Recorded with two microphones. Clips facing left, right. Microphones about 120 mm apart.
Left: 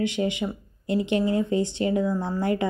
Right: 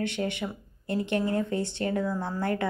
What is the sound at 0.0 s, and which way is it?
Speech, 15° left (ahead or behind).